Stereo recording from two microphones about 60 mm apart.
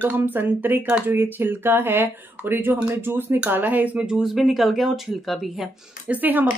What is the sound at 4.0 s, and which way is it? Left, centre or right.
Speech, centre.